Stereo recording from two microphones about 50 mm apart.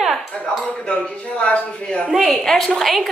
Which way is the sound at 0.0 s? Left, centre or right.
Centre.